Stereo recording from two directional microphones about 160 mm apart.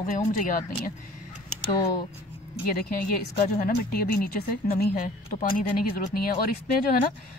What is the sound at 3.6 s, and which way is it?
Speech, 65° left (ahead or behind).